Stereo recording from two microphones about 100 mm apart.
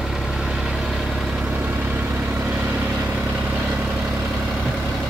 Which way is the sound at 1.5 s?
15° right (ahead or behind).